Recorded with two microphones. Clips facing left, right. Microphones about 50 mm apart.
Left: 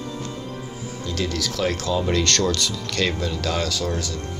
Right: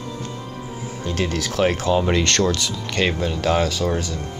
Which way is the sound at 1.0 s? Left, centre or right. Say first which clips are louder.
Right 2 dB; right.